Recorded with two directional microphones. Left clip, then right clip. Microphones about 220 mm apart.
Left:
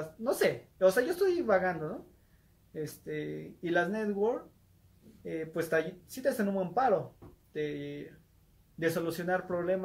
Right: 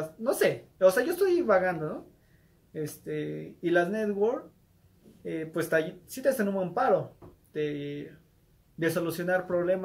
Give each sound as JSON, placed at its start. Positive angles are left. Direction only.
{"t": 0.2, "sound": "speech", "side_deg": -5}